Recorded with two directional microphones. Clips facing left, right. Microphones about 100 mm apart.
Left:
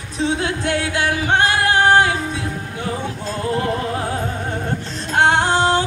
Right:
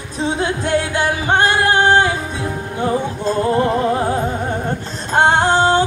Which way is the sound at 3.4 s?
30° right (ahead or behind).